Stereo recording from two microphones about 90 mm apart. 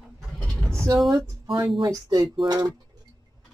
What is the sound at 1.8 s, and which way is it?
Speech, 40° right (ahead or behind).